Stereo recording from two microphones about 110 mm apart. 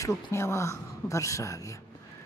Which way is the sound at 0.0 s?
25° left (ahead or behind).